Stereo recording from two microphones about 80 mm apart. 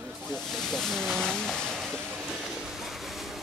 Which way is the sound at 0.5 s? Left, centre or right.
Centre.